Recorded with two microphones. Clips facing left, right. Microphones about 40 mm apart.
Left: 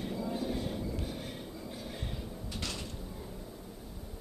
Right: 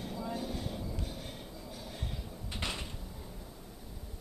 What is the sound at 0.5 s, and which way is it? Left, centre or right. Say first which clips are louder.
Train: left 4 dB; centre.